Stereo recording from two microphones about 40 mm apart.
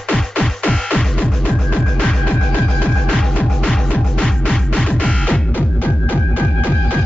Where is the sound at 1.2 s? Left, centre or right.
Left.